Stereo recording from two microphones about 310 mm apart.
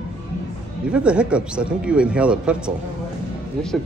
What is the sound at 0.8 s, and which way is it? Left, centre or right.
Speech, centre.